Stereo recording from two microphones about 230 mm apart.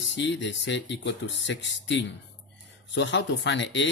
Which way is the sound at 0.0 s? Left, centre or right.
Left.